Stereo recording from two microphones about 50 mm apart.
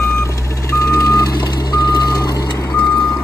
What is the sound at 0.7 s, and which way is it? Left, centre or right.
Reversing beeps, left.